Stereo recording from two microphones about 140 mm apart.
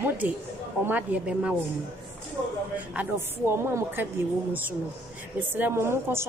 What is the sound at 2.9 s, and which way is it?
A woman's voice, 15° right (ahead or behind).